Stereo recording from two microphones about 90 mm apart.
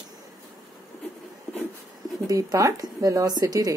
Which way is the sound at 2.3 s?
40° right (ahead or behind).